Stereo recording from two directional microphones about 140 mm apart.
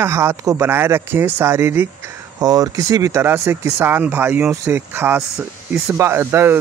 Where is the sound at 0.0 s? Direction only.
20° right (ahead or behind).